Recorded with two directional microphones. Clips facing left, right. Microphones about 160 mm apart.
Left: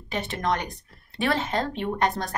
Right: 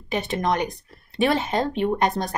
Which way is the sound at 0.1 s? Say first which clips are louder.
Right 3 dB; 15° right (ahead or behind).